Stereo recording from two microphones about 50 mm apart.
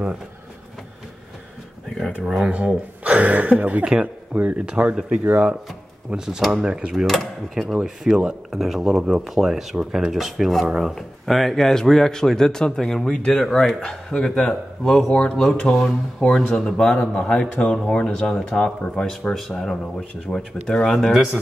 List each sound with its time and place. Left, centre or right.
2.2 s speech: centre
2.5 s speech: right
7.1 s speech: centre
8.5 s a man's voice: centre